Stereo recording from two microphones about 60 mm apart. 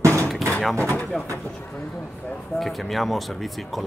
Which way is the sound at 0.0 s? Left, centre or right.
Right.